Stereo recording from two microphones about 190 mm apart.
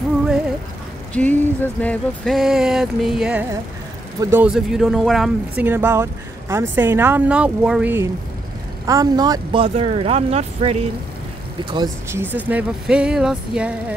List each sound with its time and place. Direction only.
1.1 s a sound: 10° left (ahead or behind); by 6.0 s 10° right (ahead or behind)
6.5 s speech: 10° right (ahead or behind); by 10.8 s 35° right (ahead or behind)
11.7 s speech: 20° right (ahead or behind)
12.2 s speech: 10° right (ahead or behind)